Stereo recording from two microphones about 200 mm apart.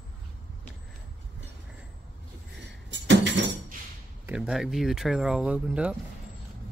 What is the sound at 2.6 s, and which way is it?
Music, 60° right (ahead or behind).